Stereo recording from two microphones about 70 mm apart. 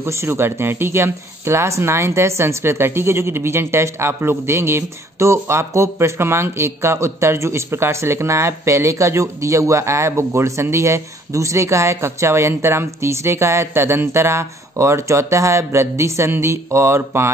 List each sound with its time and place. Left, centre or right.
0.0 s speech: right